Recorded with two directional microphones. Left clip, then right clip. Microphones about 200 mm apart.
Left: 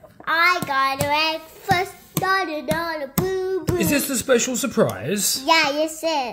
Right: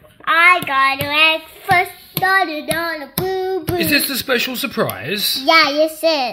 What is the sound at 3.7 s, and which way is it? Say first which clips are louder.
Speech: right 8 dB; 10° left (ahead or behind).